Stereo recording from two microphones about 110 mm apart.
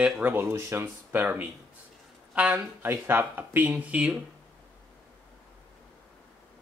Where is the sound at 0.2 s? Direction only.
20° right (ahead or behind).